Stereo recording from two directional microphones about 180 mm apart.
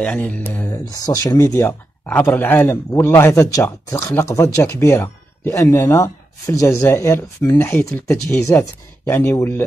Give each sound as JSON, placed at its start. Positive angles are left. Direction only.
{"t": 0.0, "sound": "speech", "side_deg": 5}
{"t": 0.8, "sound": "speech", "side_deg": 20}